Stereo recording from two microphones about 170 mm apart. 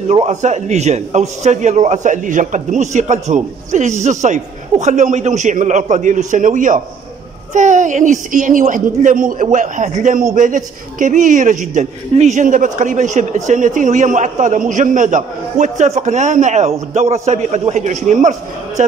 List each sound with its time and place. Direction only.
0.1 s a man's voice: 40° right (ahead or behind)